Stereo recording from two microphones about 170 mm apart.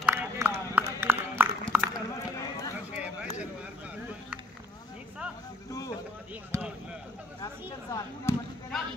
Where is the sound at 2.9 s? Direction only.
5° right (ahead or behind).